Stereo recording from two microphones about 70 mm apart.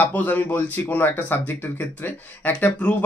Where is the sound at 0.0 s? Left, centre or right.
Left.